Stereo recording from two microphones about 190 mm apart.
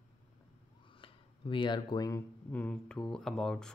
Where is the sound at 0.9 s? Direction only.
25° left (ahead or behind).